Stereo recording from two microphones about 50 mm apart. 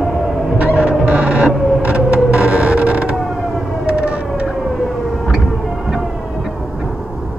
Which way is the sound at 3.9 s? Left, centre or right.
Right.